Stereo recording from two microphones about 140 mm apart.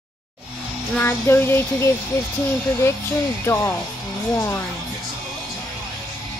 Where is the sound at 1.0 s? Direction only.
15° left (ahead or behind).